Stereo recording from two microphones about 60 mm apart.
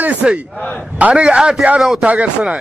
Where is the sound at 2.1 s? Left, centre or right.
Right.